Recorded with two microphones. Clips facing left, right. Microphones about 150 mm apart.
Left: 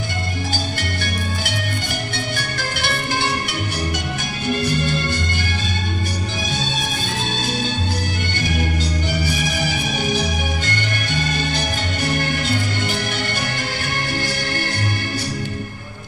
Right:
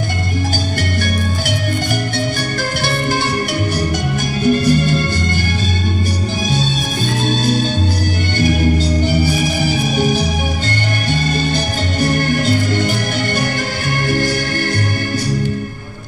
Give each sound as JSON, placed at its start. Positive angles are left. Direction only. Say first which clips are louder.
{"t": 4.5, "sound": "music", "louder": "right 7 dB", "side_deg": -40}
{"t": 8.4, "sound": "music", "louder": "right 9 dB", "side_deg": -35}